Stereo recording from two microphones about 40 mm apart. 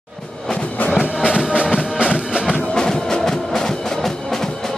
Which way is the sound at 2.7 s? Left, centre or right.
Centre.